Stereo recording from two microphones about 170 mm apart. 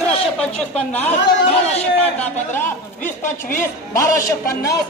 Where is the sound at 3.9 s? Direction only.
20° left (ahead or behind).